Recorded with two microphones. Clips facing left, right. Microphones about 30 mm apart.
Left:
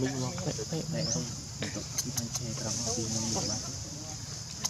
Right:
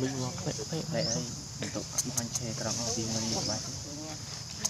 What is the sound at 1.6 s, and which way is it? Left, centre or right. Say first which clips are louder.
Speech: right 1 dB; centre.